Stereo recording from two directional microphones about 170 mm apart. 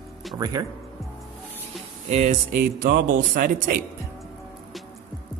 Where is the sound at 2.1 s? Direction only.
45° right (ahead or behind).